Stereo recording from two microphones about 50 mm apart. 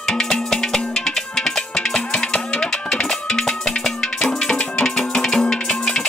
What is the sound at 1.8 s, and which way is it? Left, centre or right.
Music, centre.